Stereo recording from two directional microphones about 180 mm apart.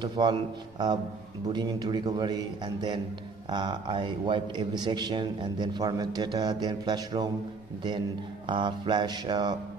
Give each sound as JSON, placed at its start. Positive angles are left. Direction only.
{"t": 0.0, "sound": "a man's voice", "side_deg": -25}
{"t": 8.5, "sound": "a man's voice", "side_deg": -25}